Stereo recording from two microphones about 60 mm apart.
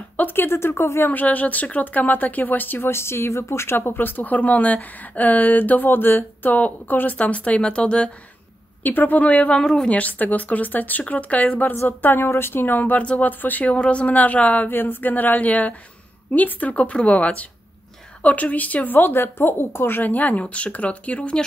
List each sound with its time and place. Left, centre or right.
0.2 s speech: left
1.1 s speech: left
8.8 s speech: left
9.6 s speech: centre
9.8 s speech: left
12.0 s speech: left
14.7 s speech: left; by 21.5 s centre